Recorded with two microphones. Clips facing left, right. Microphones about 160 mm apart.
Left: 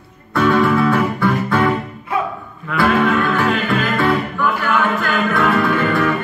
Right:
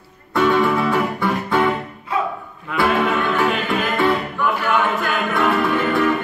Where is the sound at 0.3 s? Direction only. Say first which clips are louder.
Left 2 dB; 20° right (ahead or behind).